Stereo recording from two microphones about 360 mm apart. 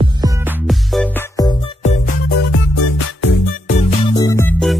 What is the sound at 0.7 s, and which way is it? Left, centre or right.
Music, centre.